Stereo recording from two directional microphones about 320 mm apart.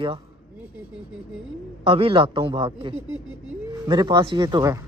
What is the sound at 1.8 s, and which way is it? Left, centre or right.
Speech, centre.